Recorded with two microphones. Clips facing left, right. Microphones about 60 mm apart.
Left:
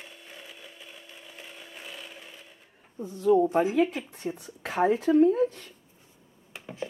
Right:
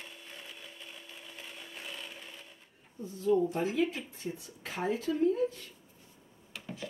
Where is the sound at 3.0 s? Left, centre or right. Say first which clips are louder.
Left 6 dB; left.